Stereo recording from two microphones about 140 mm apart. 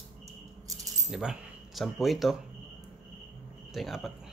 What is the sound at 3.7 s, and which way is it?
Speech, centre (ahead or behind).